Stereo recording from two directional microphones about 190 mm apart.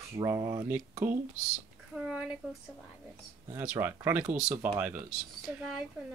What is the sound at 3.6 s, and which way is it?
Speech, 10° right (ahead or behind).